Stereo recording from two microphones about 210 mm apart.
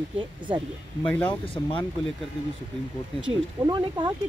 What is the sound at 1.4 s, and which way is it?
Speech, 25° left (ahead or behind).